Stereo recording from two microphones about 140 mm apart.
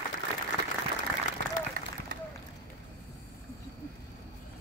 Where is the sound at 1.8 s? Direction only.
70° right (ahead or behind).